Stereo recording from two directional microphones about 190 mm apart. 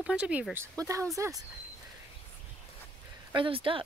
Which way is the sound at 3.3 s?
25° right (ahead or behind).